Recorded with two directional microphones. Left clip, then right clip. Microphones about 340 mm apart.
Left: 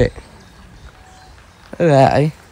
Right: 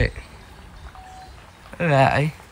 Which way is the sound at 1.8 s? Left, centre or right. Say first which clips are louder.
Left 6 dB; centre.